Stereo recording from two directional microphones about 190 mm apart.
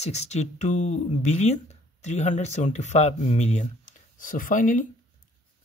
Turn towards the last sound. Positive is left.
turn(degrees=45)  # may be behind; listen again after turning